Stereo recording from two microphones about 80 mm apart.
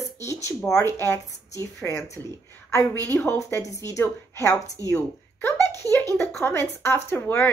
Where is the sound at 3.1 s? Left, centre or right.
Left.